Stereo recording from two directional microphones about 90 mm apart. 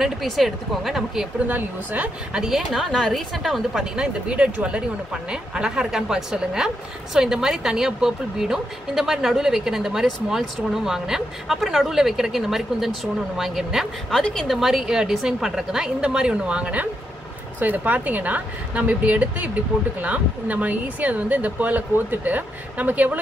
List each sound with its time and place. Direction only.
0.0 s a woman's voice: centre (ahead or behind)
1.5 s a woman's voice: 15° right (ahead or behind)
2.4 s a woman's voice: centre (ahead or behind); by 23.1 s 20° right (ahead or behind)